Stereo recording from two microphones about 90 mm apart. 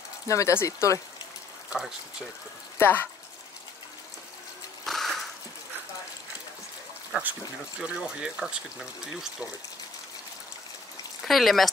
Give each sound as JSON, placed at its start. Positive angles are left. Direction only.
{"t": 0.3, "sound": "speech", "side_deg": 35}
{"t": 1.7, "sound": "speech", "side_deg": -10}
{"t": 4.8, "sound": "a sound", "side_deg": 0}
{"t": 7.1, "sound": "speech", "side_deg": -15}
{"t": 11.2, "sound": "speech", "side_deg": 0}